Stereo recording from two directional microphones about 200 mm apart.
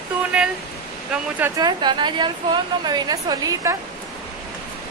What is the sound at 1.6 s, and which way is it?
A woman's voice, 20° right (ahead or behind).